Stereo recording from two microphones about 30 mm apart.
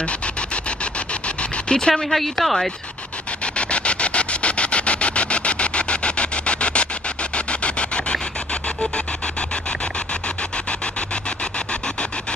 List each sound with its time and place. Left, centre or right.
1.7 s speech: left
2.0 s speech: centre
3.5 s a sound: left